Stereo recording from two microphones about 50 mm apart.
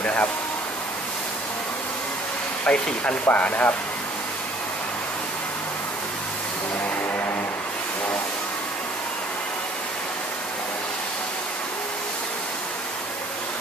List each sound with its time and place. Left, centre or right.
0.0 s speech: left
2.6 s speech: left